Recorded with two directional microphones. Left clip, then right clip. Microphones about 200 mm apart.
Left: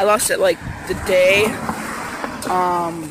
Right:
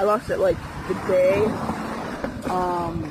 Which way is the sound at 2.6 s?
25° left (ahead or behind).